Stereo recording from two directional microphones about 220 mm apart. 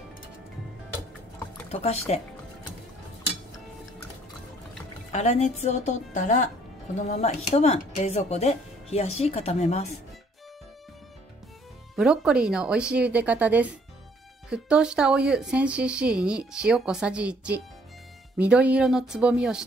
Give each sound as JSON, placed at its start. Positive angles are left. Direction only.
{"t": 1.7, "sound": "speech", "side_deg": 30}
{"t": 5.1, "sound": "a woman's voice", "side_deg": 30}
{"t": 11.9, "sound": "speech", "side_deg": 0}